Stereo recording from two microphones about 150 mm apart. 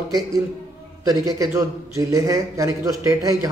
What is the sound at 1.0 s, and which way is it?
A man's voice, 25° right (ahead or behind).